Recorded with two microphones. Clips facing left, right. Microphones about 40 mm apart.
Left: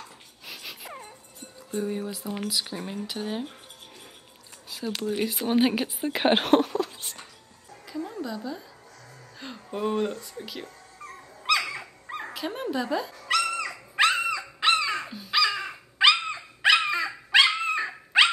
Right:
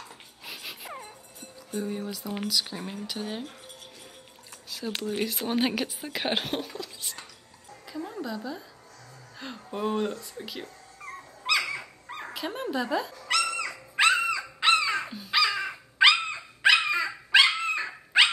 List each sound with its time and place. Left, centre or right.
0.5 s wail: centre
1.7 s speech: centre
4.6 s a sound: centre
5.5 s speech: centre
5.9 s a woman's voice: left
6.4 s speech: left
7.8 s a sound: centre
9.4 s speech: centre
11.4 s dog: centre